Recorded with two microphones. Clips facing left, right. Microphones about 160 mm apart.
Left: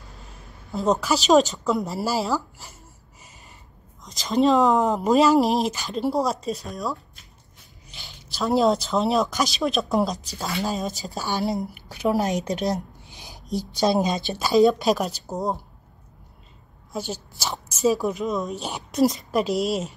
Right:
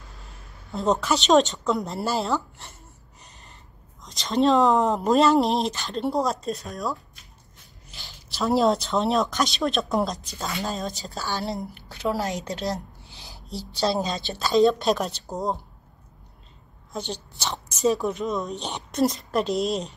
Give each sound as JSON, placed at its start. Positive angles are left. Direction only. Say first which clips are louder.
{"t": 0.1, "sound": "a sound", "louder": "left 2 dB", "side_deg": 0}
{"t": 4.0, "sound": "speech", "louder": "left 1 dB", "side_deg": 0}
{"t": 11.1, "sound": "a woman's voice", "louder": "left 5 dB", "side_deg": 15}
{"t": 16.9, "sound": "a woman's voice", "louder": "left 2 dB", "side_deg": 5}